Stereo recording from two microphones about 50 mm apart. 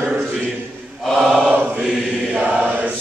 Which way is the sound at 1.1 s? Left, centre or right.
Centre.